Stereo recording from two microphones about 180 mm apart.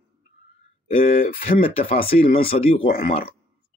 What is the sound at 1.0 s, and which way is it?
Speech, 55° left (ahead or behind).